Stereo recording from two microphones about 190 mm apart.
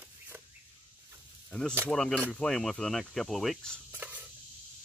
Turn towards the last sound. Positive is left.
turn(degrees=-10)  # may be behind; listen again after turning